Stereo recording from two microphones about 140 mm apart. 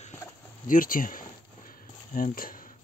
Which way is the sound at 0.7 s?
80° left.